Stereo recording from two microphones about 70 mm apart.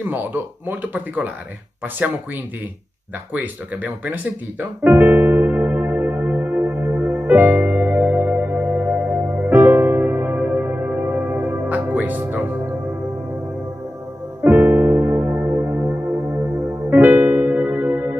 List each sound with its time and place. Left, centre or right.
0.0 s a man's voice: right
3.3 s speech: right
6.8 s music: right
7.3 s music: right
9.3 s music: right
9.7 s music: right
14.4 s electric piano: right
15.6 s music: right
16.9 s music: right